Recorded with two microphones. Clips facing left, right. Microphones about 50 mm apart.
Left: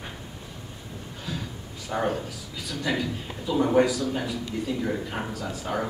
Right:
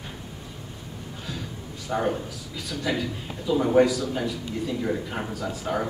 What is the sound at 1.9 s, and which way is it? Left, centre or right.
A man's voice, centre.